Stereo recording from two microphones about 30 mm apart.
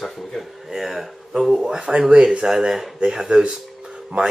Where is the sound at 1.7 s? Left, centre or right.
Right.